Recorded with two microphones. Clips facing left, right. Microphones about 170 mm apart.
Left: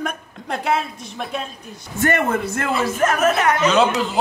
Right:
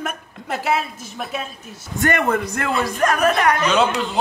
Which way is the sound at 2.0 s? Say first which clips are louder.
Even; 15° right (ahead or behind).